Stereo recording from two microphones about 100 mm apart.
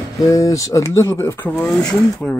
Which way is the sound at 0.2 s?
35° left (ahead or behind).